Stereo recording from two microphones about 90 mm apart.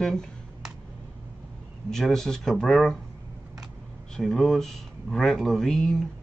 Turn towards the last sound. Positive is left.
turn(degrees=5)  # may be behind; listen again after turning